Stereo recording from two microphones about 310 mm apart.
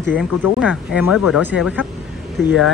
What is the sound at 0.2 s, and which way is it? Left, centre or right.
Speech, centre.